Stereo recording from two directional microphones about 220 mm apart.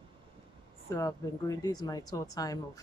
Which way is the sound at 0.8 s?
15° left (ahead or behind).